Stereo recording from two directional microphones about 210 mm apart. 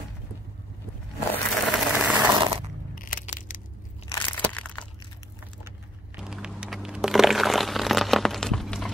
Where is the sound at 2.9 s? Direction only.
40° left (ahead or behind).